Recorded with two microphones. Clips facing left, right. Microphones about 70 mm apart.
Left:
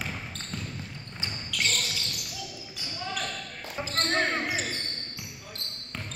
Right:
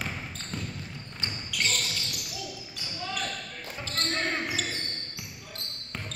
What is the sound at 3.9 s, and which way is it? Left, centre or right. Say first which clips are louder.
Basketball bounce: left 3 dB; left.